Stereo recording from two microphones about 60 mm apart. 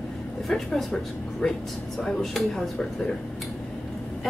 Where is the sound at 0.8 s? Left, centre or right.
Centre.